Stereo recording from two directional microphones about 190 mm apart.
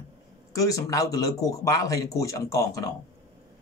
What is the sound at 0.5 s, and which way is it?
Speech, 15° left (ahead or behind).